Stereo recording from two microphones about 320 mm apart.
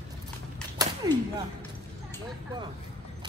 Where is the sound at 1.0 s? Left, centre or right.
Centre.